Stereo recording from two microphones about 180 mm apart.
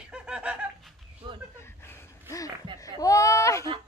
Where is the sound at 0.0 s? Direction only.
5° right (ahead or behind).